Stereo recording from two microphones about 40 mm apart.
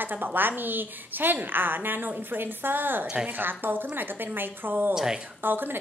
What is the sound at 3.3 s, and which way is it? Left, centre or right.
A woman's voice, right.